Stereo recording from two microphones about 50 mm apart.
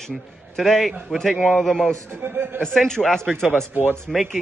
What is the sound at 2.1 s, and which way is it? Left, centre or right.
Speech, right.